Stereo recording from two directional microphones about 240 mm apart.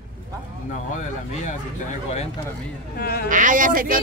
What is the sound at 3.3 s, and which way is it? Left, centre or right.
Speech, right.